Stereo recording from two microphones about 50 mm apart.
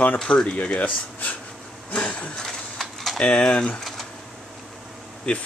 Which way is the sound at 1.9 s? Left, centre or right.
Left.